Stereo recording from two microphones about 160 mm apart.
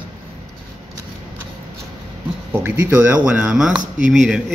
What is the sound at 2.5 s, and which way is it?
Speech, 15° right (ahead or behind).